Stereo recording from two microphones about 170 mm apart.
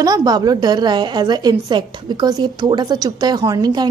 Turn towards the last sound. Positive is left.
turn(degrees=-25)  # may be behind; listen again after turning